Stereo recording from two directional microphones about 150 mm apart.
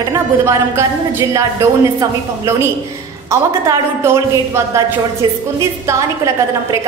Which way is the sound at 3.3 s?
20° right (ahead or behind).